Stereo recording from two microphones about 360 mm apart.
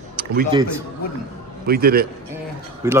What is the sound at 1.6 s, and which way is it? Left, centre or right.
Speech, right.